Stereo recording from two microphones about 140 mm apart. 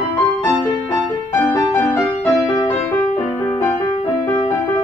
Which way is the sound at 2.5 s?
30° left (ahead or behind).